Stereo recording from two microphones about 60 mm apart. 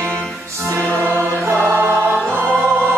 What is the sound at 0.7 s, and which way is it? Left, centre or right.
Music, right.